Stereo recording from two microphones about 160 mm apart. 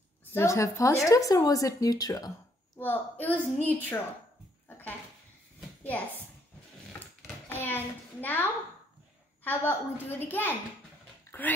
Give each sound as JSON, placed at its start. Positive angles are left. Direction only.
{"t": 0.3, "sound": "speech", "side_deg": 15}
{"t": 2.8, "sound": "a woman's voice", "side_deg": 10}
{"t": 4.6, "sound": "a sound", "side_deg": 10}
{"t": 7.4, "sound": "hands", "side_deg": 10}
{"t": 9.4, "sound": "a woman's voice", "side_deg": 10}
{"t": 11.3, "sound": "a sound", "side_deg": 20}